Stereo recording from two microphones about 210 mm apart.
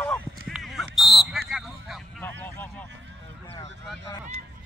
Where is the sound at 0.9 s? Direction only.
Centre (ahead or behind).